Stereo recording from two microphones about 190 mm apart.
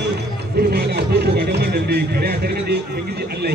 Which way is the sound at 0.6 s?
55° right (ahead or behind).